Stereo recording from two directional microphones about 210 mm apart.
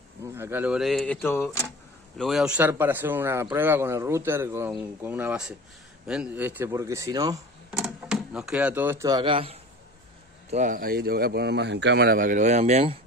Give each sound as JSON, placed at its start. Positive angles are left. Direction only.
{"t": 0.4, "sound": "speech", "side_deg": -10}
{"t": 2.1, "sound": "speech", "side_deg": 0}
{"t": 7.7, "sound": "speech", "side_deg": 0}
{"t": 10.5, "sound": "speech", "side_deg": -35}